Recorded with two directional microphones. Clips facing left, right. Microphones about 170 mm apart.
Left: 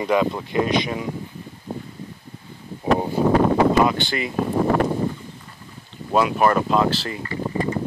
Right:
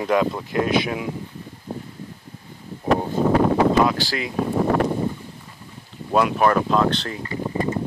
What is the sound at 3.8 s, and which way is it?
Speech, centre (ahead or behind).